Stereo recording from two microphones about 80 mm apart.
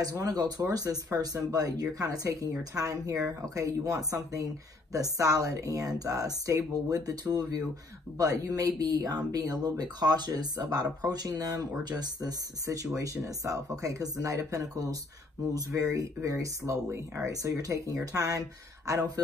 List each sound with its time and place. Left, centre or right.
0.2 s speech: right